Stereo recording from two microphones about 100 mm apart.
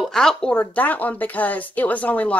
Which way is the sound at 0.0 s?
Centre (ahead or behind).